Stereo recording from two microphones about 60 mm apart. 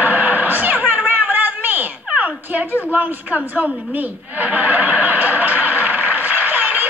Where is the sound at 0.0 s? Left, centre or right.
Right.